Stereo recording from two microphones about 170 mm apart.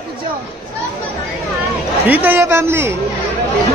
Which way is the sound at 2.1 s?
10° right (ahead or behind).